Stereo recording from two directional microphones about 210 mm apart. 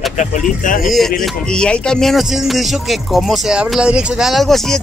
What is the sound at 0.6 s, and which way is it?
Music, 40° left (ahead or behind).